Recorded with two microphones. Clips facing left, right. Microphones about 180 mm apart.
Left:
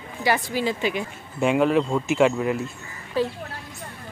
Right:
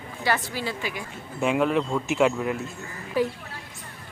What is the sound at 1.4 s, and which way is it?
Speech, centre (ahead or behind).